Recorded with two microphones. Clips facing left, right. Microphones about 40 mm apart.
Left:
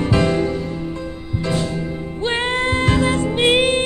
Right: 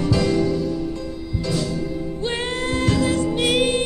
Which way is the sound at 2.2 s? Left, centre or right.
Left.